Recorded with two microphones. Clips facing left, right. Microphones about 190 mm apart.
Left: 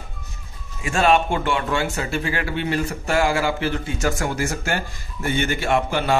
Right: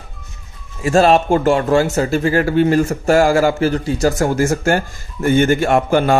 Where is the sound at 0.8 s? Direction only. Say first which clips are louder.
Right 6 dB; 40° right (ahead or behind).